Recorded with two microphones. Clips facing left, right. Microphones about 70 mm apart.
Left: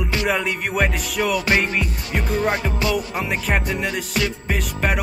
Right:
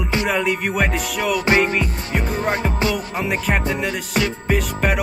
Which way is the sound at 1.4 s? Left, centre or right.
Right.